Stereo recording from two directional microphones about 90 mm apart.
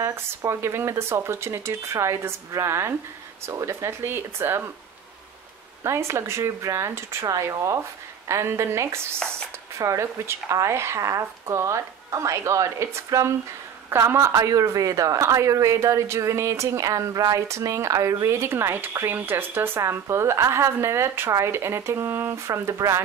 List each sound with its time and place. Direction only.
0.0 s a woman's voice: 30° right (ahead or behind)
5.9 s a woman's voice: 30° right (ahead or behind)